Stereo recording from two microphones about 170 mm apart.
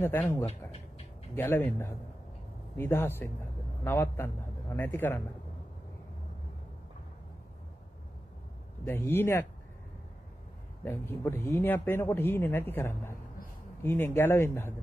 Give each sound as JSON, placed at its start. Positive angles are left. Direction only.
{"t": 0.0, "sound": "speech", "side_deg": 10}
{"t": 0.5, "sound": "a sound", "side_deg": 35}
{"t": 1.3, "sound": "speech", "side_deg": 15}
{"t": 2.8, "sound": "speech", "side_deg": 15}
{"t": 8.8, "sound": "speech", "side_deg": 10}
{"t": 10.8, "sound": "speech", "side_deg": 10}